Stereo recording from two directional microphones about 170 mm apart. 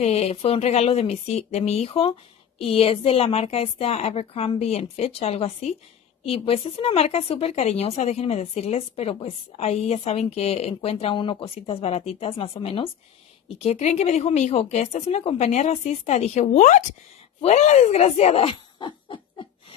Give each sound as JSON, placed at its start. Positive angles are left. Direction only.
{"t": 0.0, "sound": "speech", "side_deg": 40}